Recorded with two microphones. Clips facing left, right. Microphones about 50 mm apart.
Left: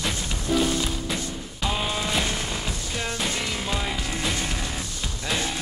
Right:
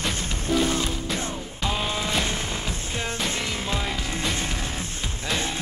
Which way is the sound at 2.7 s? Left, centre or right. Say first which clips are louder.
Even; right.